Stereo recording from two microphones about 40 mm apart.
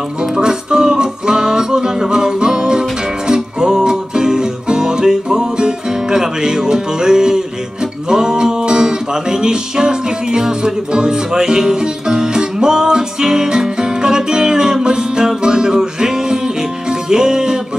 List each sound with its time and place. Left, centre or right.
0.2 s music: centre